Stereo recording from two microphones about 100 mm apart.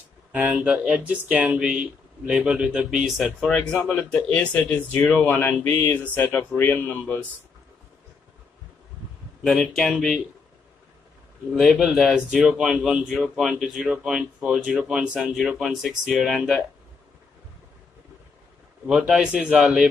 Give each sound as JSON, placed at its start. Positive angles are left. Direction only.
{"t": 0.3, "sound": "speech", "side_deg": -15}
{"t": 9.4, "sound": "a man's voice", "side_deg": 0}
{"t": 11.5, "sound": "a man's voice", "side_deg": 0}
{"t": 18.9, "sound": "speech", "side_deg": -5}